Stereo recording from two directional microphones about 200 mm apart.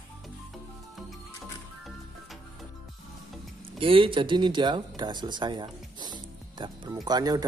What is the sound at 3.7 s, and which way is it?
Speech, 25° right (ahead or behind).